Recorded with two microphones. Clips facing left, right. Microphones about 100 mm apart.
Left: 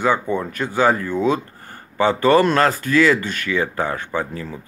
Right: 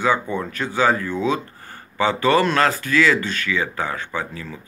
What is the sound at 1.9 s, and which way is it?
Speech, 45° left (ahead or behind).